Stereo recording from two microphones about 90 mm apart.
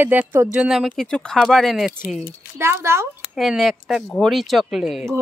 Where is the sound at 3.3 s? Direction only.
5° right (ahead or behind).